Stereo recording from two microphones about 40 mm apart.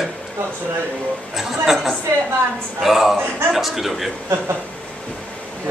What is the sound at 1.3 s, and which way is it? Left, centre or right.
A man's voice, centre.